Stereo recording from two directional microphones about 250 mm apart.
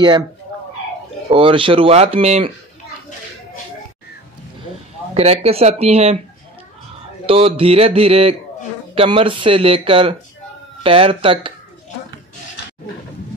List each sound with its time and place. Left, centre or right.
1.3 s speech: right
5.1 s speech: right
7.2 s speech: right